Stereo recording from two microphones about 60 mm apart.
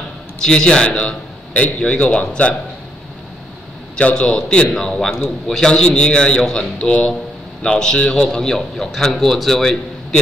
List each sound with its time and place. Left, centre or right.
0.4 s a man's voice: centre
3.9 s a man's voice: centre